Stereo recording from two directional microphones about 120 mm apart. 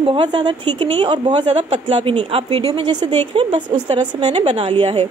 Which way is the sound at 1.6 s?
50° right (ahead or behind).